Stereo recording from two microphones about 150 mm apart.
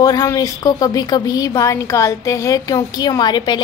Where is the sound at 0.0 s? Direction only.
25° left (ahead or behind).